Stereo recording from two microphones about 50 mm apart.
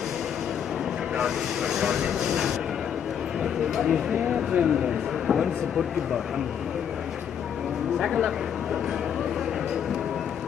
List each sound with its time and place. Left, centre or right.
1.1 s speech: centre
3.7 s speech: centre
4.1 s speech: centre
5.2 s speech: centre
8.0 s speech: centre